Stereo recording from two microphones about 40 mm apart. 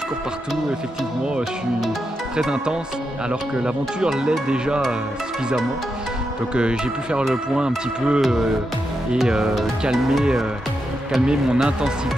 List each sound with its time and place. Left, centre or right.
2.5 s speech: right
6.5 s speech: right
9.3 s speech: centre
11.2 s speech: right